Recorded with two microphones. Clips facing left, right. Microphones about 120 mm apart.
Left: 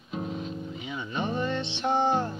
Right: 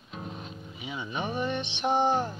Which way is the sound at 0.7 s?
15° right (ahead or behind).